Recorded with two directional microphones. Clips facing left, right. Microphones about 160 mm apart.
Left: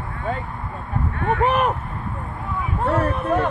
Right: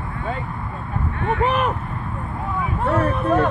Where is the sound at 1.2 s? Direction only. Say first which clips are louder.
Left 1 dB; 45° left (ahead or behind).